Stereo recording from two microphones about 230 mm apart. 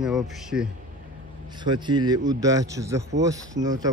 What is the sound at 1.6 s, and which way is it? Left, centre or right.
Speech, centre.